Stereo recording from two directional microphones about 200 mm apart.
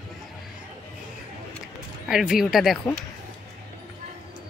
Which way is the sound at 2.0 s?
5° right (ahead or behind).